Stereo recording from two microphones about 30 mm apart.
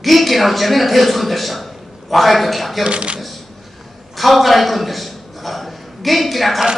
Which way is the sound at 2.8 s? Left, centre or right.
Right.